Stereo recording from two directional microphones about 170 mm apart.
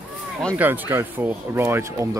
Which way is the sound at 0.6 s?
10° right (ahead or behind).